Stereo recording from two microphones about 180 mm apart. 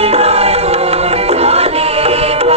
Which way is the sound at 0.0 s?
35° right (ahead or behind).